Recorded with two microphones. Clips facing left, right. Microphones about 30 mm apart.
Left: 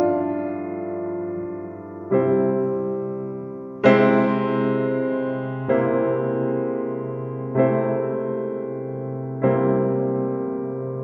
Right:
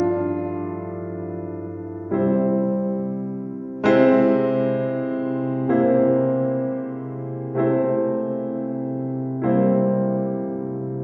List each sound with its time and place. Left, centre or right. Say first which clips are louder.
2.0 s music: left 2 dB; centre
5.8 s music: right 4 dB; centre
8.4 s music: right 1 dB; centre
9.4 s electric piano: even; centre
10.0 s music: even; centre